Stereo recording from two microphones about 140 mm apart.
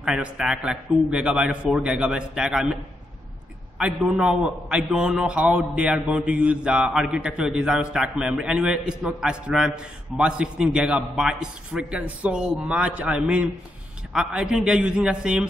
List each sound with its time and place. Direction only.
0.0 s a man's voice: 5° right (ahead or behind)